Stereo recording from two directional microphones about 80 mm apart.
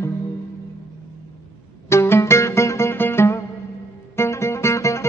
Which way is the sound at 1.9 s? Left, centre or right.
Left.